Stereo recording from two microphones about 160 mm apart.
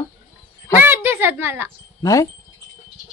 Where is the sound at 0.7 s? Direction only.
15° right (ahead or behind).